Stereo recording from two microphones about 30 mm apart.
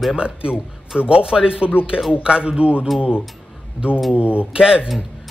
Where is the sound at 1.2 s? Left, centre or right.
Right.